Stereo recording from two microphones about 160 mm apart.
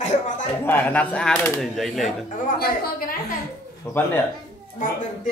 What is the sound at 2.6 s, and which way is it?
Speech, 65° left (ahead or behind).